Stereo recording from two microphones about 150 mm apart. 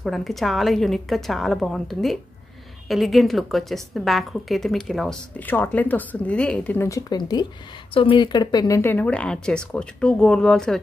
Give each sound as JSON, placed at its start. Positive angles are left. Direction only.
{"t": 0.0, "sound": "a woman's voice", "side_deg": 0}